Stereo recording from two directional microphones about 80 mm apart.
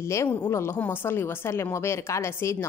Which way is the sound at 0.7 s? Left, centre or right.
Left.